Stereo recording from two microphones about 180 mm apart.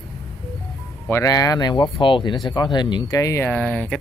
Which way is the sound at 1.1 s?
20° left (ahead or behind).